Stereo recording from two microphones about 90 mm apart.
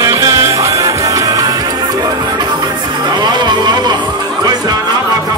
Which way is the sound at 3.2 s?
55° right (ahead or behind).